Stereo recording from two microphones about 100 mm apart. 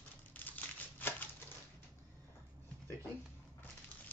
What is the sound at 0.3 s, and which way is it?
Crumpling, 15° left (ahead or behind).